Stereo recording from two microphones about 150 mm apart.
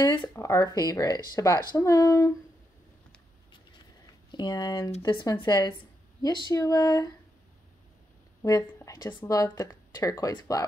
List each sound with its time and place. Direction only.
0.0 s speech: 20° left (ahead or behind)
3.7 s a sound: 30° left (ahead or behind)
5.0 s speech: 30° left (ahead or behind)
8.4 s speech: 20° left (ahead or behind)